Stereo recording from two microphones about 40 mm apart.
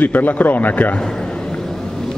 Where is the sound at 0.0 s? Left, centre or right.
Left.